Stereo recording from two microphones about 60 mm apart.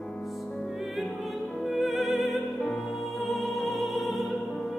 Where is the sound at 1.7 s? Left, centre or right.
Centre.